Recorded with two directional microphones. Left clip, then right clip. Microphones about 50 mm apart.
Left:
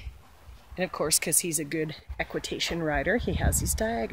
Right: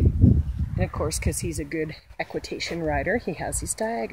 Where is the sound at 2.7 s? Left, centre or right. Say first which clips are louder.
Right 3 dB; centre.